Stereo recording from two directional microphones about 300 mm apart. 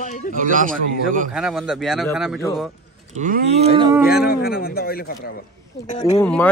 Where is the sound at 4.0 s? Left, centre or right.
Left.